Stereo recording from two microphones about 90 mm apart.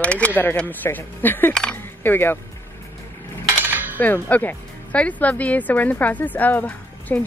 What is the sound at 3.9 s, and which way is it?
Speech, 25° left (ahead or behind).